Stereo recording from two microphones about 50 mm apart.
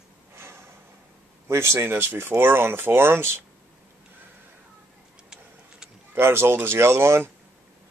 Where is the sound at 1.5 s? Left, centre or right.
Right.